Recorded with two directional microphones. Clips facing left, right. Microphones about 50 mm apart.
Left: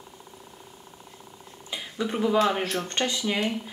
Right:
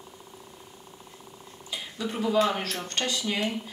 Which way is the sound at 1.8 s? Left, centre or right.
Centre.